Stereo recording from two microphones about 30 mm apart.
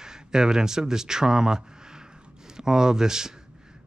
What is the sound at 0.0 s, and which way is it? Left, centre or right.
Speech, right.